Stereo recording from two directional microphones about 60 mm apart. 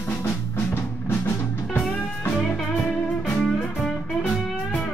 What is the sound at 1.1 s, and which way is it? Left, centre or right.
Music, left.